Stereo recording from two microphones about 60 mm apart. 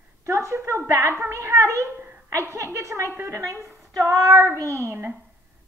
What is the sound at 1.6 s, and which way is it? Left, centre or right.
A woman's voice, right.